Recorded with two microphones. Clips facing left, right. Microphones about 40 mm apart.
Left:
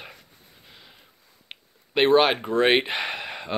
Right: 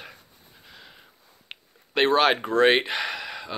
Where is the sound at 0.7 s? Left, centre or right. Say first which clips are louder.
Right 3 dB; centre.